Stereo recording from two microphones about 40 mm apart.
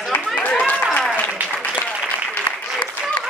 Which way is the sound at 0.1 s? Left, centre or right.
Left.